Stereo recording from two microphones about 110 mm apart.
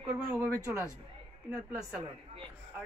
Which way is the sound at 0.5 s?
25° right (ahead or behind).